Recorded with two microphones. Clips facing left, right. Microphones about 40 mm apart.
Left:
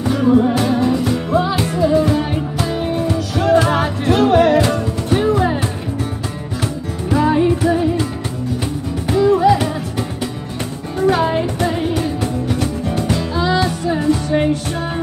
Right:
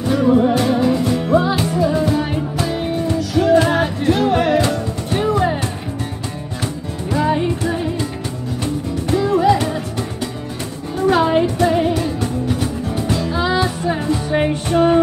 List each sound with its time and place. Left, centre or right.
0.1 s music: centre
7.1 s music: centre
9.2 s music: centre
11.1 s music: centre
13.3 s music: centre
14.5 s music: right